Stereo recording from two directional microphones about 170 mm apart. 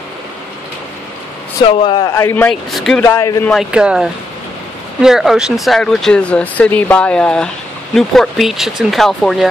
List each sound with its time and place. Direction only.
1.8 s a man's voice: 30° left (ahead or behind)
2.7 s speech: centre (ahead or behind)
3.0 s speech: 15° left (ahead or behind)
3.4 s speech: centre (ahead or behind)